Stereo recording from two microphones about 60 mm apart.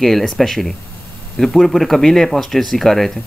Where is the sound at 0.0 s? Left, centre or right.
Centre.